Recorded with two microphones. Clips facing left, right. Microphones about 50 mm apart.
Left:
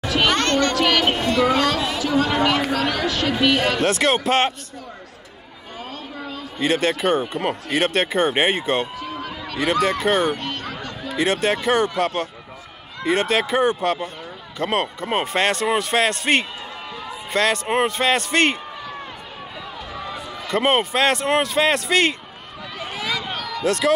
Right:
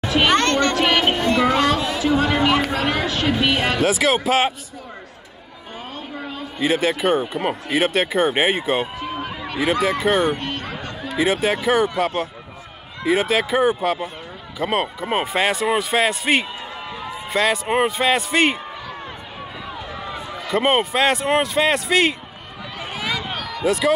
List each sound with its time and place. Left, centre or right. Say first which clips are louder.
0.0 s children playing: right 2 dB; right
2.7 s speech: even; right
3.3 s speech: left 4 dB; centre
3.8 s speech: right 1 dB; centre
6.6 s speech: right 1 dB; centre
8.9 s a sound: right 2 dB; right
9.6 s speech: even; centre
10.3 s a sound: right 1 dB; right
11.1 s speech: right 1 dB; centre
20.4 s speech: right 1 dB; centre
22.8 s a sound: even; right
23.2 s run: right 1 dB; centre